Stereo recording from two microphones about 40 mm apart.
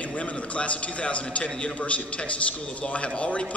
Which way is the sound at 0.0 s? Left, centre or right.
Left.